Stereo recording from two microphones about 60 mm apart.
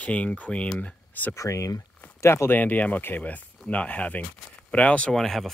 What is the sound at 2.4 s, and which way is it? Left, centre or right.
Speech, left.